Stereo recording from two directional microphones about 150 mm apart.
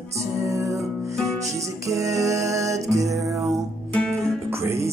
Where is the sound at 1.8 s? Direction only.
20° right (ahead or behind).